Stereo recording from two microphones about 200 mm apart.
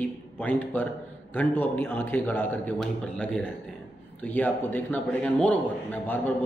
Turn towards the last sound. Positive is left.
turn(degrees=10)  # may be behind; listen again after turning